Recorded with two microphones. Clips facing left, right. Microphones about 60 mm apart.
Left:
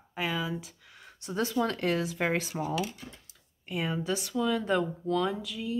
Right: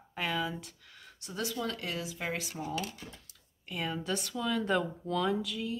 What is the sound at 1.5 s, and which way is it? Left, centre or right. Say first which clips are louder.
Speech: left 11 dB; left.